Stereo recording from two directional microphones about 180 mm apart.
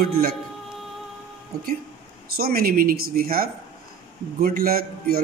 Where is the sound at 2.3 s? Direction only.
55° right (ahead or behind).